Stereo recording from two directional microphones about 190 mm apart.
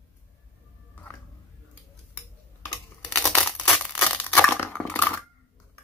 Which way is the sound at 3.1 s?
Centre (ahead or behind).